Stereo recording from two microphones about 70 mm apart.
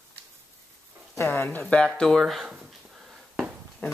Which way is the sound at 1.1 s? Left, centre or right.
Left.